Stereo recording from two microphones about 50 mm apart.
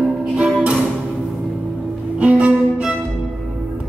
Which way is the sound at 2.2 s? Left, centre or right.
Right.